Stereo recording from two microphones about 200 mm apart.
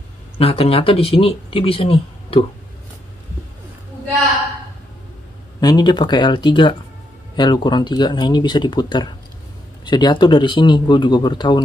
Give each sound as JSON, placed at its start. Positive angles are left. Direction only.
{"t": 0.4, "sound": "speech", "side_deg": 30}
{"t": 5.6, "sound": "speech", "side_deg": 20}